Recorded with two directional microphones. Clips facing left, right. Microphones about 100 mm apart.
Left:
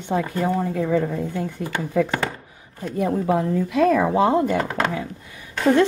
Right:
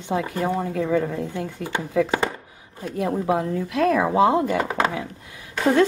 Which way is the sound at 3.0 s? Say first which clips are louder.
Left 2 dB; 10° right (ahead or behind).